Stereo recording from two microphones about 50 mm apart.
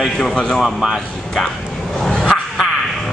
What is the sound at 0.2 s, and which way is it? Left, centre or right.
Speech, centre.